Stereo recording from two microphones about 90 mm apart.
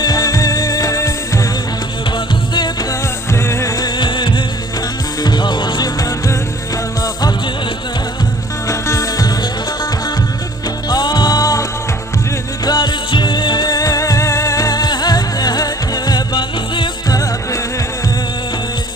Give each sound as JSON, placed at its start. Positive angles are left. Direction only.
{"t": 0.0, "sound": "music", "side_deg": 40}
{"t": 3.3, "sound": "music", "side_deg": 30}
{"t": 3.8, "sound": "music", "side_deg": 55}
{"t": 8.6, "sound": "music", "side_deg": 35}
{"t": 10.9, "sound": "music", "side_deg": 50}
{"t": 12.6, "sound": "music", "side_deg": 50}